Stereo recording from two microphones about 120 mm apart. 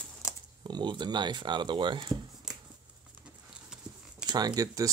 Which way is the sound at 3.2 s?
5° right (ahead or behind).